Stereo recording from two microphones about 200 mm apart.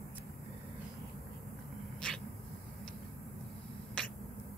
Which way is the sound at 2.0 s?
5° left (ahead or behind).